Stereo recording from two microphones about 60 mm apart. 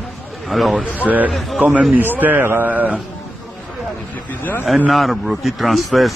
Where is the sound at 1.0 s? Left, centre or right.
Right.